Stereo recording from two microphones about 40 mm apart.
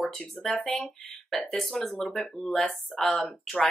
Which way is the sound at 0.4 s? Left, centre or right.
Centre.